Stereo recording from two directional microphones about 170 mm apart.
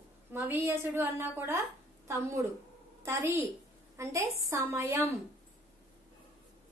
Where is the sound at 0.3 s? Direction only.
10° right (ahead or behind).